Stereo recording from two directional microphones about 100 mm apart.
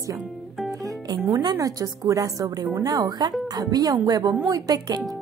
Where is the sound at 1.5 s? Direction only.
35° right (ahead or behind).